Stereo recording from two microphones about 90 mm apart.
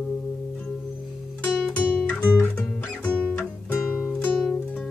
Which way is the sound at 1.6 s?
15° left (ahead or behind).